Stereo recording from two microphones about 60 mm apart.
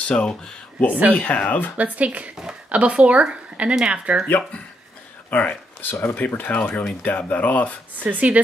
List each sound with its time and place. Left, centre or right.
0.0 s speech: centre
1.8 s a woman's voice: right
5.3 s speech: left
8.0 s a woman's voice: right